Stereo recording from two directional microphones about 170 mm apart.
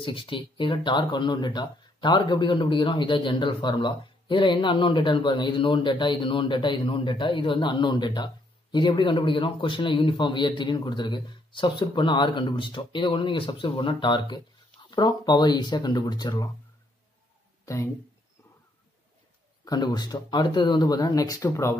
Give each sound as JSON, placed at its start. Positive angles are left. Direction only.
{"t": 0.0, "sound": "speech", "side_deg": 30}
{"t": 19.6, "sound": "speech", "side_deg": 25}